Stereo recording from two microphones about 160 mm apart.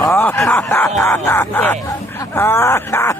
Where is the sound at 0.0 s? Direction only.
20° left (ahead or behind).